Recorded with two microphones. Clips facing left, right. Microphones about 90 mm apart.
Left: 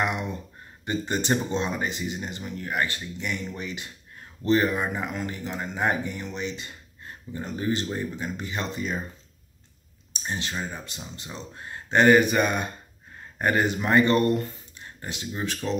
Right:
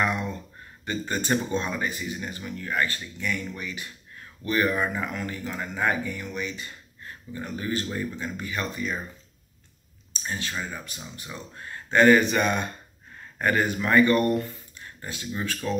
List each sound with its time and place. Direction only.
0.0 s speech: 20° left (ahead or behind)
10.2 s speech: 25° left (ahead or behind)